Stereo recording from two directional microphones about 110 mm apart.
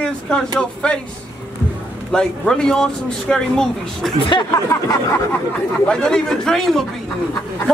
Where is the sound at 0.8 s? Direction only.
10° left (ahead or behind).